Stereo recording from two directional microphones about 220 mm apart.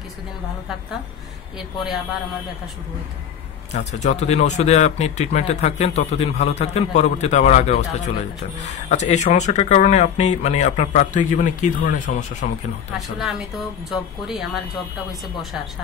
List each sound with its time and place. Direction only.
3.7 s speech: 30° left (ahead or behind)
13.2 s speech: centre (ahead or behind)